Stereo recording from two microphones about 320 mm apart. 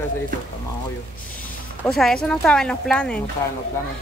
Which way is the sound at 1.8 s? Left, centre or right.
Centre.